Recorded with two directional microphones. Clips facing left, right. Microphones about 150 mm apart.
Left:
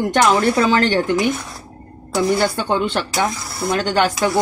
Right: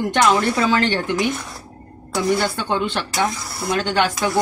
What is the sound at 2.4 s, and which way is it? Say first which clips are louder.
Speech: left 3 dB; 45° left (ahead or behind).